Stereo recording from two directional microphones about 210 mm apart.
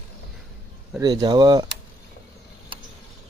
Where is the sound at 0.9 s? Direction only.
15° right (ahead or behind).